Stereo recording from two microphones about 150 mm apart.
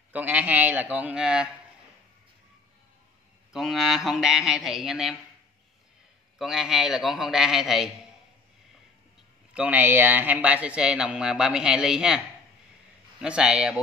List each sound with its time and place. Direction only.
0.1 s speech: 10° right (ahead or behind)
3.5 s a man's voice: centre (ahead or behind)
6.3 s a man's voice: 5° right (ahead or behind)
9.5 s speech: 10° right (ahead or behind)
13.2 s a man's voice: 5° right (ahead or behind)